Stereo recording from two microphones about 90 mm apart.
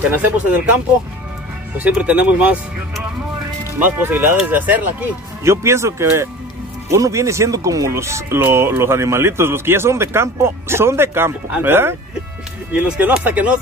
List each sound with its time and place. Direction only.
0.1 s speech: 20° right (ahead or behind)
1.8 s speech: 15° right (ahead or behind)
3.8 s speech: 20° right (ahead or behind)
5.4 s speech: 30° right (ahead or behind)
12.7 s speech: 15° right (ahead or behind)